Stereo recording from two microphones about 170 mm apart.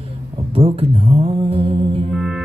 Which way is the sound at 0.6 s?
35° right (ahead or behind).